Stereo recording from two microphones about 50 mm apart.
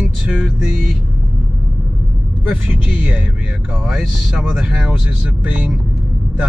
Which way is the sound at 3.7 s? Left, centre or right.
Centre.